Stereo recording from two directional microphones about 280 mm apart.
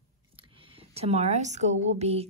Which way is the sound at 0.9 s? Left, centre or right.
Right.